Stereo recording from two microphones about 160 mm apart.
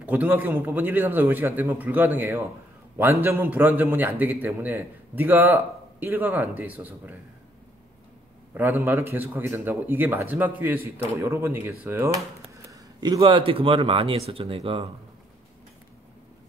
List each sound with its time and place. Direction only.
0.0 s a man's voice: 10° right (ahead or behind)
8.5 s a man's voice: 10° right (ahead or behind)
12.6 s speech: 25° right (ahead or behind)